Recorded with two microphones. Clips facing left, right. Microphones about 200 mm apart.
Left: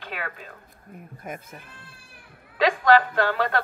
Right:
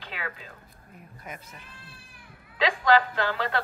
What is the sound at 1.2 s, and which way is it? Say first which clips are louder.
A woman's voice: left 6 dB; 50° left (ahead or behind).